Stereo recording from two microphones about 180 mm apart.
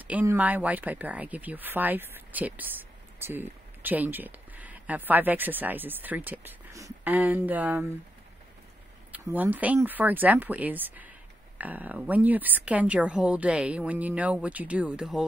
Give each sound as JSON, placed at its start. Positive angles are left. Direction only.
{"t": 0.0, "sound": "speech", "side_deg": -10}
{"t": 9.1, "sound": "speech", "side_deg": -10}